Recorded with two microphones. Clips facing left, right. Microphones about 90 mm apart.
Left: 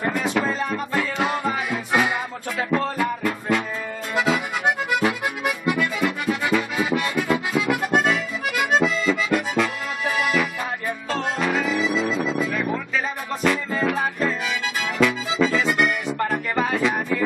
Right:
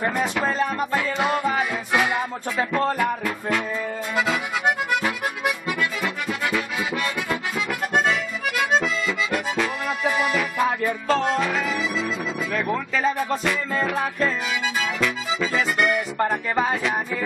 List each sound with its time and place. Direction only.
0.2 s music: centre (ahead or behind)
4.1 s accordion: centre (ahead or behind)
11.1 s music: centre (ahead or behind)
12.0 s music: 30° left (ahead or behind)
12.3 s music: centre (ahead or behind)
15.4 s accordion: centre (ahead or behind)
16.3 s a sound: 10° right (ahead or behind)